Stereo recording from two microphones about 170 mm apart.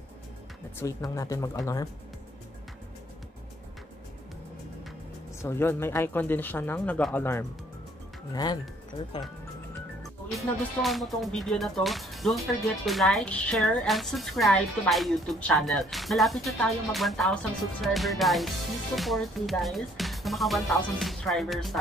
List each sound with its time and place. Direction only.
0.7 s speech: 20° left (ahead or behind)
5.4 s speech: 15° left (ahead or behind)
8.3 s speech: 25° left (ahead or behind)
10.3 s speech: centre (ahead or behind)